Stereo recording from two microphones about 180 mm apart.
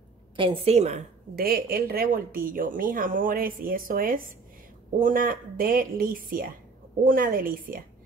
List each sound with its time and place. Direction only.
0.4 s a woman's voice: 30° right (ahead or behind)
1.3 s speech: 55° right (ahead or behind)